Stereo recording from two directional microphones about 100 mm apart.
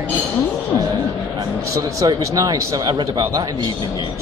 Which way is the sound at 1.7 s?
35° right (ahead or behind).